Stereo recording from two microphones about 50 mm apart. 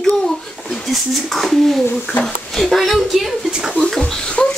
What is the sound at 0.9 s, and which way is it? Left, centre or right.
Speech, centre.